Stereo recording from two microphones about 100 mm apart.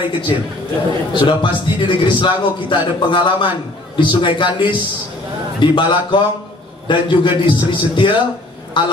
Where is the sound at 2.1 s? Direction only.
55° left (ahead or behind).